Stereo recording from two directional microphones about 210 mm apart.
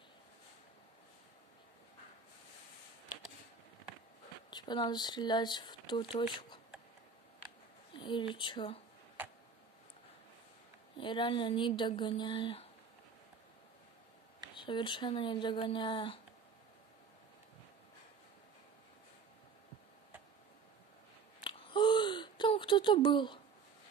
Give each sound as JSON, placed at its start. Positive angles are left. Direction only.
{"t": 4.5, "sound": "speech", "side_deg": 20}
{"t": 7.9, "sound": "speech", "side_deg": 25}
{"t": 11.0, "sound": "speech", "side_deg": 25}
{"t": 14.5, "sound": "speech", "side_deg": 20}
{"t": 21.5, "sound": "a sound", "side_deg": 20}